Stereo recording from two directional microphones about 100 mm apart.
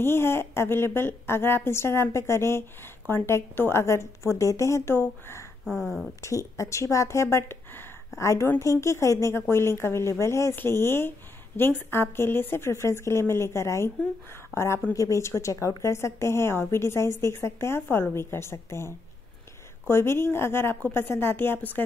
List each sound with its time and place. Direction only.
0.0 s a woman's voice: 25° left (ahead or behind)
5.7 s speech: centre (ahead or behind)
6.2 s a woman's voice: 30° left (ahead or behind)